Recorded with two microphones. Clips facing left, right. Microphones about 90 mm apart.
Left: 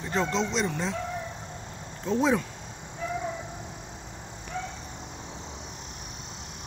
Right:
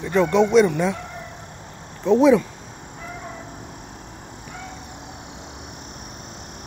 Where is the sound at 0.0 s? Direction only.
65° right (ahead or behind).